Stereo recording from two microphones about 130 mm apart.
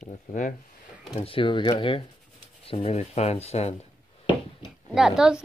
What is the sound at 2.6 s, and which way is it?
Speech, 50° left (ahead or behind).